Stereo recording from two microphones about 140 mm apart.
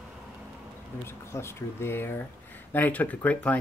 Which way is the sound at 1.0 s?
20° left (ahead or behind).